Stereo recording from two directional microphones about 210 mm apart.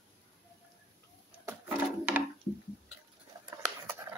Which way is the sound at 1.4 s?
10° right (ahead or behind).